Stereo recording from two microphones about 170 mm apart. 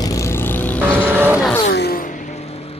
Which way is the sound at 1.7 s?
75° left (ahead or behind).